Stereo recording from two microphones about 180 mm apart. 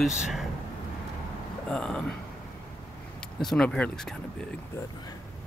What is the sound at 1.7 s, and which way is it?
Speech, 5° left (ahead or behind).